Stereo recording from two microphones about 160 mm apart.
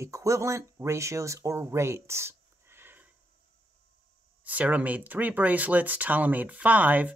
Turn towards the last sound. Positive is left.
turn(degrees=-10)  # may be behind; listen again after turning